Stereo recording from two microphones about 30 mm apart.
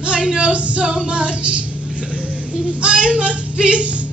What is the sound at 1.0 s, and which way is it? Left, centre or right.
Speech, right.